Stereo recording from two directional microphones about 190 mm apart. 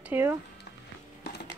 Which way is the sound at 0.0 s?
10° right (ahead or behind).